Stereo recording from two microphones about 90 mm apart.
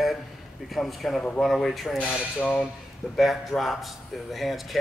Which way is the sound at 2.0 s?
15° left (ahead or behind).